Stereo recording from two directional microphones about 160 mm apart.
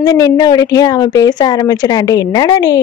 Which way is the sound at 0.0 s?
25° left (ahead or behind).